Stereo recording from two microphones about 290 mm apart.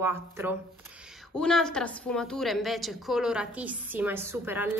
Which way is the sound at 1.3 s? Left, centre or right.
Centre.